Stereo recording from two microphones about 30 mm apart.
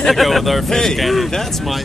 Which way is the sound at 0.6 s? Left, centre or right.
Centre.